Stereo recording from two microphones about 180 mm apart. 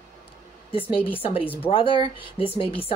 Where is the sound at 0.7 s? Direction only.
30° left (ahead or behind).